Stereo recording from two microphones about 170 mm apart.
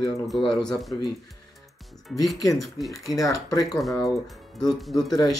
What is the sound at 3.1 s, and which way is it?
Speech, 20° left (ahead or behind).